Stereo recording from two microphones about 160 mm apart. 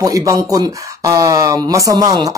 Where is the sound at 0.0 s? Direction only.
20° right (ahead or behind).